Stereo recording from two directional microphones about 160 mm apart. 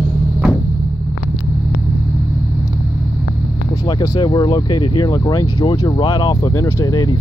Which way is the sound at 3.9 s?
25° left (ahead or behind).